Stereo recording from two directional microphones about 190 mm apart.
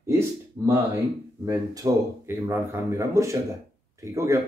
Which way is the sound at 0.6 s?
10° right (ahead or behind).